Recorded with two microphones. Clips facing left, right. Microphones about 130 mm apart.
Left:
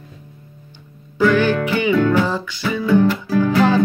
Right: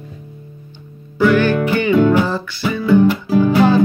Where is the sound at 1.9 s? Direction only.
20° right (ahead or behind).